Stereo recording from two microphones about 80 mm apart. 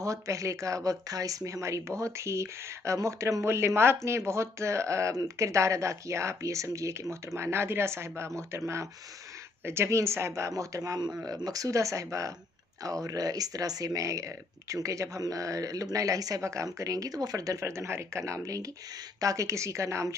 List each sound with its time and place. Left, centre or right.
0.0 s speech: right
17.6 s speech: right